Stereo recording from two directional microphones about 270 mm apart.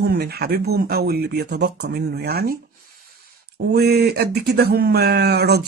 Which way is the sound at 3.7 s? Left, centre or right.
Right.